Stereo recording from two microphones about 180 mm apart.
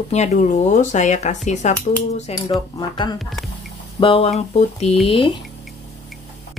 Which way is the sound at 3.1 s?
Centre (ahead or behind).